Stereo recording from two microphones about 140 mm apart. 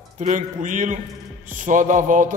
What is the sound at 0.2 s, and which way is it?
A man's voice, 65° right (ahead or behind).